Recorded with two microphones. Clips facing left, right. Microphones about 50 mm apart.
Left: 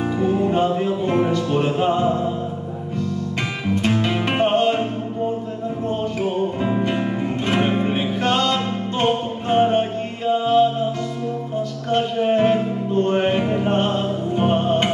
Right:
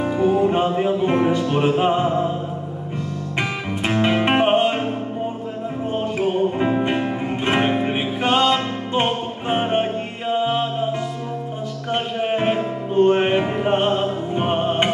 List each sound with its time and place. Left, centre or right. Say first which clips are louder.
0.2 s music: right 2 dB; centre
3.3 s music: right 1 dB; right
5.9 s music: right 2 dB; right